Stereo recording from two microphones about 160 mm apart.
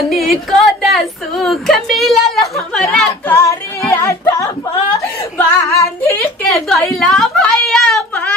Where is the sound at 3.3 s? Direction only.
20° left (ahead or behind).